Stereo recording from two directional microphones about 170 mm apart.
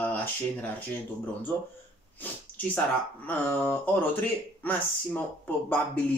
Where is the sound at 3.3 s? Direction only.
10° left (ahead or behind).